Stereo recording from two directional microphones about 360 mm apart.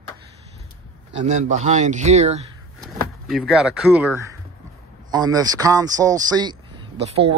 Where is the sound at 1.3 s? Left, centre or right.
Centre.